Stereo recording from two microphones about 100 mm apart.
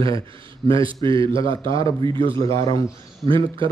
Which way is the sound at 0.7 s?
60° right (ahead or behind).